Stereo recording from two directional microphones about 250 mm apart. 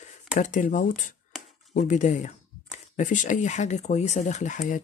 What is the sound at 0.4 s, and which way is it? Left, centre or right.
Speech, left.